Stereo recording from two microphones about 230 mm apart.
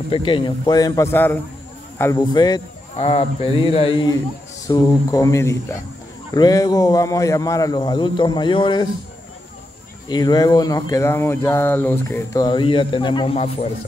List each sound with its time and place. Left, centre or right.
0.1 s speech: left
10.0 s speech: centre